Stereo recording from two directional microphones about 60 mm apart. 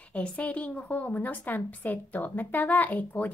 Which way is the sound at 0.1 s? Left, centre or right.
Left.